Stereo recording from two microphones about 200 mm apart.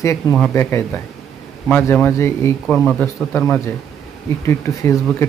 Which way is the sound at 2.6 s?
Centre (ahead or behind).